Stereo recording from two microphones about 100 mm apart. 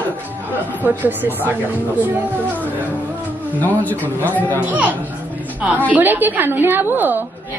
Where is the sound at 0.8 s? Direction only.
20° right (ahead or behind).